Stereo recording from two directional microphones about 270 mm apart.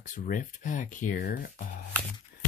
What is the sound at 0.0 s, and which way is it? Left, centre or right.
Speech, left.